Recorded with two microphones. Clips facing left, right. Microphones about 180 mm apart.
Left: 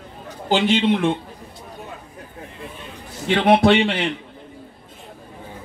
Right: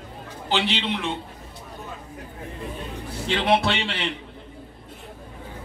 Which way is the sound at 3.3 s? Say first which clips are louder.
Left 7 dB; 50° left (ahead or behind).